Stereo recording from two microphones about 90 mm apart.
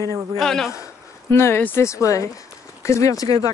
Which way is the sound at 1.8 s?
35° left (ahead or behind).